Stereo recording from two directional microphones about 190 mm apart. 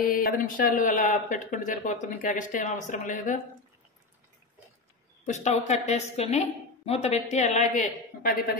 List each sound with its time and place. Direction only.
0.0 s speech: 50° left (ahead or behind)
5.2 s a woman's voice: 35° left (ahead or behind)